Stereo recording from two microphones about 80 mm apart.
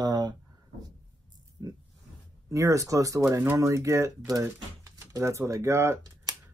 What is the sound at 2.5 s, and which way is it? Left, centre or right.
Speech, right.